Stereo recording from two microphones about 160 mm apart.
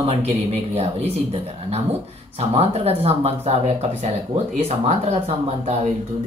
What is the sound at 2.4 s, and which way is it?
Speech, 40° right (ahead or behind).